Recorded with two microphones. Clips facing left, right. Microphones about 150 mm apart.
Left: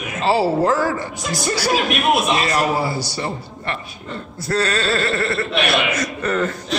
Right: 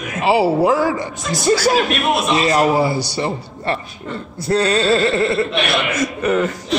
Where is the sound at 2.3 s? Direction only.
25° right (ahead or behind).